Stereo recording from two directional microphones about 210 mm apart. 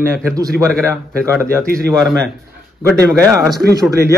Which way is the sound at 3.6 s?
50° right (ahead or behind).